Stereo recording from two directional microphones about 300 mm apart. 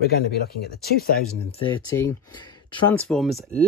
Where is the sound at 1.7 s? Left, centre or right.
Centre.